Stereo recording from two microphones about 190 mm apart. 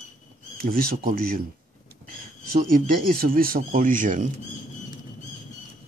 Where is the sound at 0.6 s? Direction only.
50° right (ahead or behind).